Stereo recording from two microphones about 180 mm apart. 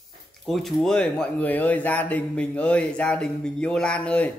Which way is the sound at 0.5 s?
Centre (ahead or behind).